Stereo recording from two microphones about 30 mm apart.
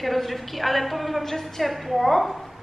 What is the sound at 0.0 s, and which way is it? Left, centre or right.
A woman's voice, centre.